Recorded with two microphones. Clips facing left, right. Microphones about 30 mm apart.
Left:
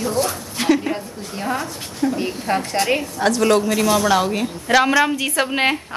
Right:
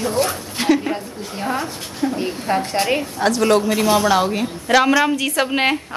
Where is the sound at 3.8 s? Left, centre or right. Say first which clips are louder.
Right 1 dB; right.